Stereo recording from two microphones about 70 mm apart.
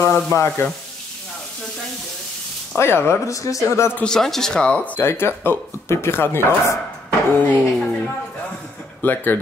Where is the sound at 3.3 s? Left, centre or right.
Left.